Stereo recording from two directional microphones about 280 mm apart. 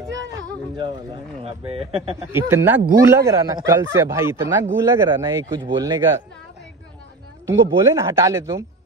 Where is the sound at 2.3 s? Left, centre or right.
Centre.